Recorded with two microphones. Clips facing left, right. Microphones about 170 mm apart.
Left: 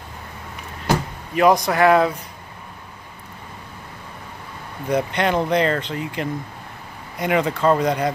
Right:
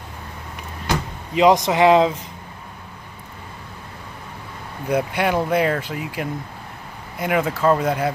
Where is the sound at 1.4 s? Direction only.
20° right (ahead or behind).